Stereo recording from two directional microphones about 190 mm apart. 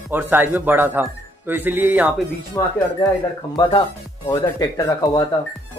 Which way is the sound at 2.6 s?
20° left (ahead or behind).